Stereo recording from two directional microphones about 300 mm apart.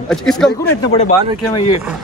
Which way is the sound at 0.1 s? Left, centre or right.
Centre.